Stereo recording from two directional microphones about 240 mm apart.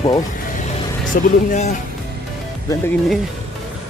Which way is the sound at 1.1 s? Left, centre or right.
Left.